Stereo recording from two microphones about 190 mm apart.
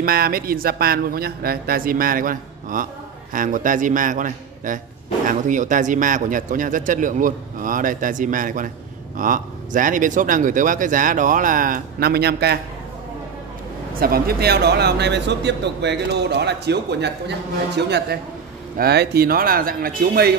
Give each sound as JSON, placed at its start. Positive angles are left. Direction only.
{"t": 0.0, "sound": "speech", "side_deg": -50}
{"t": 13.9, "sound": "a man's voice", "side_deg": -50}